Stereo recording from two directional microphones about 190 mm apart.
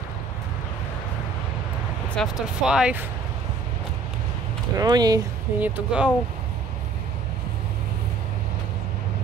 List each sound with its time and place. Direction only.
2.1 s speech: centre (ahead or behind)
4.7 s speech: 20° right (ahead or behind)
5.6 s speech: 5° right (ahead or behind)